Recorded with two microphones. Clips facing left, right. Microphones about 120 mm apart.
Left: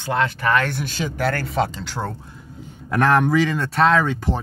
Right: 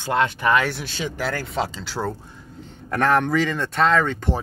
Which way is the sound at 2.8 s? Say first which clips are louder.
Left 2 dB; centre (ahead or behind).